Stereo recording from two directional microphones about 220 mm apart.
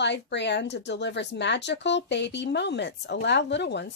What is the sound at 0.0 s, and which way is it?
Speech, 50° left (ahead or behind).